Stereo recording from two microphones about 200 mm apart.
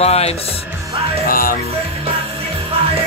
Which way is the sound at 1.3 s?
45° left (ahead or behind).